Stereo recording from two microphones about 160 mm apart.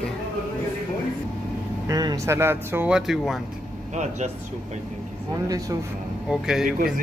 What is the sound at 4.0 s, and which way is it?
Speech, 45° right (ahead or behind).